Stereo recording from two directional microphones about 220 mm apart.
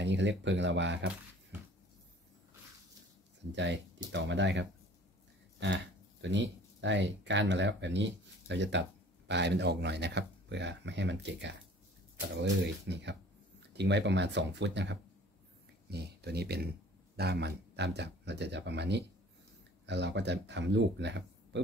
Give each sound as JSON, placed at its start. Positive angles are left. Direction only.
{"t": 0.0, "sound": "speech", "side_deg": -55}
{"t": 3.5, "sound": "speech", "side_deg": -55}
{"t": 6.2, "sound": "speech", "side_deg": -55}